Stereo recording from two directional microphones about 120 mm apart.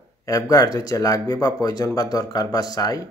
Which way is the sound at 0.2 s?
30° left (ahead or behind).